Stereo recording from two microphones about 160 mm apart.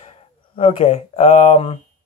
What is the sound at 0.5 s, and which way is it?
Speech, 35° left (ahead or behind).